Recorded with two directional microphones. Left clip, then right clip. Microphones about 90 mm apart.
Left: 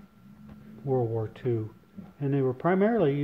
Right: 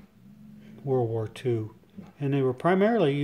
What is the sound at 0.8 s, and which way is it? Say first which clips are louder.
Speech: right 1 dB; 30° right (ahead or behind).